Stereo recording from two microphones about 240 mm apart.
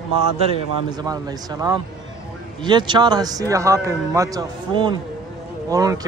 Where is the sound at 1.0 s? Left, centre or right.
Centre.